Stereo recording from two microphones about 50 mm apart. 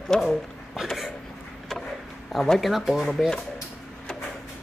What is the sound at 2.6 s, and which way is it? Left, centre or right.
Speech, centre.